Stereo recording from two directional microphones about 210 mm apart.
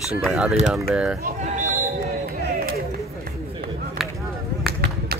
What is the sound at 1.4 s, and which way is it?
Basketball bounce, 35° right (ahead or behind).